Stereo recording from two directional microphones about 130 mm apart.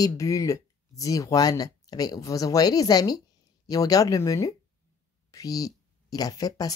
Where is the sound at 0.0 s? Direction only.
25° left (ahead or behind).